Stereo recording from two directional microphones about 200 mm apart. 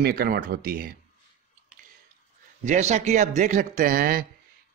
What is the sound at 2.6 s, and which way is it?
A man's voice, 35° right (ahead or behind).